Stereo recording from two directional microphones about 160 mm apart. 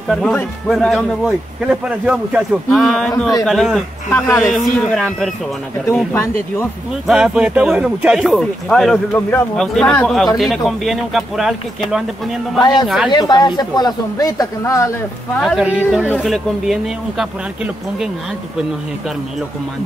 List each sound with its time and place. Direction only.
0.1 s speech: 5° left (ahead or behind)
6.1 s speech: 15° left (ahead or behind)
7.1 s speech: 5° right (ahead or behind)
12.5 s speech: 30° left (ahead or behind)
12.8 s speech: centre (ahead or behind)
13.1 s speech: 25° left (ahead or behind)
15.4 s speech: 5° right (ahead or behind)